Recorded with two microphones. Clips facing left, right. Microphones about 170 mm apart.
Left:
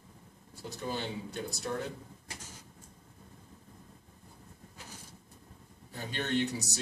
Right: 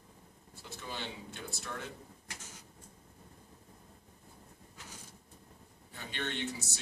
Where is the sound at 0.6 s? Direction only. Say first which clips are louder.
Left 7 dB; 40° left (ahead or behind).